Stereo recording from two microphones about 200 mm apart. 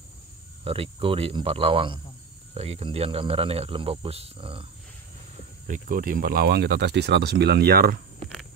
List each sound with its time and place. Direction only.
0.7 s speech: 25° right (ahead or behind)
5.7 s speech: 45° right (ahead or behind)